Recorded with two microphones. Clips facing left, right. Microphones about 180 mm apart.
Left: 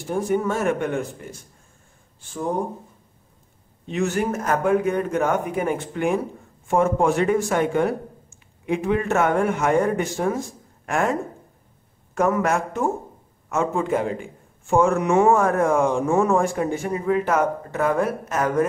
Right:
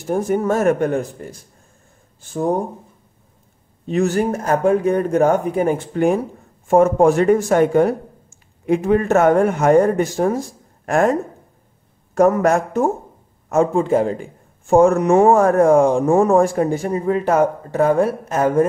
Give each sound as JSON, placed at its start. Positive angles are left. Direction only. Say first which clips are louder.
{"t": 0.1, "sound": "speech", "louder": "right 4 dB", "side_deg": -45}
{"t": 3.8, "sound": "speech", "louder": "right 5 dB", "side_deg": -40}
{"t": 12.2, "sound": "speech", "louder": "right 6 dB", "side_deg": -40}